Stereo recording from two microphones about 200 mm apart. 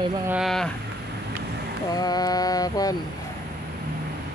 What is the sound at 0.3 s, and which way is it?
Speech, centre (ahead or behind).